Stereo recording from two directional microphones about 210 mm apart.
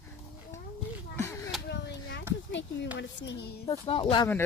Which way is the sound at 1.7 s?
55° left (ahead or behind).